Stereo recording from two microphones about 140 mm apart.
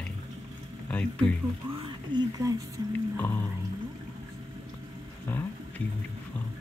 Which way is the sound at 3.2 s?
15° left (ahead or behind).